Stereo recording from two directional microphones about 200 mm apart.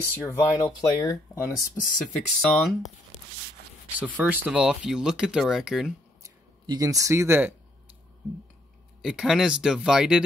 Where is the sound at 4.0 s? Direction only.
10° right (ahead or behind).